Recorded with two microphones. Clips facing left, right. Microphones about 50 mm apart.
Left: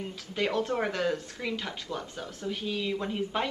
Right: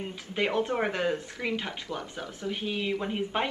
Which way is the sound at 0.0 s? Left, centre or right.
Right.